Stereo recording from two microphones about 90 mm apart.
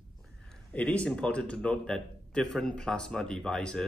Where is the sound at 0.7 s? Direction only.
15° left (ahead or behind).